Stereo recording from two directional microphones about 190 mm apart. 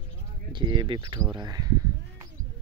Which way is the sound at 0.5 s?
25° right (ahead or behind).